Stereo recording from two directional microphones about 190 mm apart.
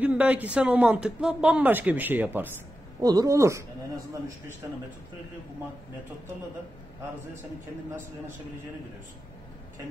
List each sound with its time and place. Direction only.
0.0 s speech: 5° right (ahead or behind)
3.0 s speech: 20° right (ahead or behind)